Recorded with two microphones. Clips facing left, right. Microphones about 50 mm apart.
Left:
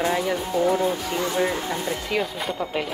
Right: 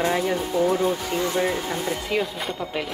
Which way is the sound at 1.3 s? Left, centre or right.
Centre.